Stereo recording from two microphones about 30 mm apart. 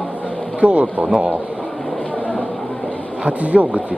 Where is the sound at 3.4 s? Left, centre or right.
Right.